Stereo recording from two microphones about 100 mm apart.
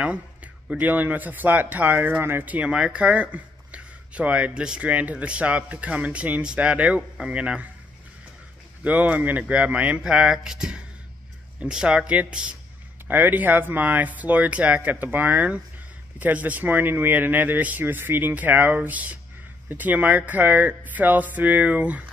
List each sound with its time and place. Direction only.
0.0 s speech: 15° right (ahead or behind)
8.8 s speech: 15° right (ahead or behind)